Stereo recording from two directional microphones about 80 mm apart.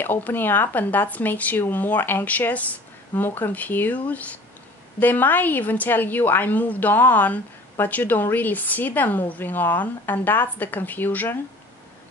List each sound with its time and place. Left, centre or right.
0.0 s a woman's voice: left
5.0 s a woman's voice: left